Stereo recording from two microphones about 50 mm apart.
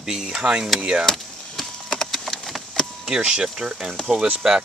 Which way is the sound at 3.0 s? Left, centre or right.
Centre.